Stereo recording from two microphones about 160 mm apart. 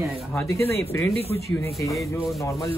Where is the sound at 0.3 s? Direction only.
15° left (ahead or behind).